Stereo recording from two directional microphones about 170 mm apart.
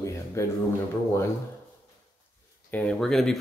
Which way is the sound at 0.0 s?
15° left (ahead or behind).